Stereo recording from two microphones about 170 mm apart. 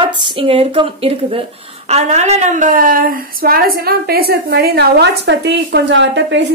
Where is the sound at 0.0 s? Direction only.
30° right (ahead or behind).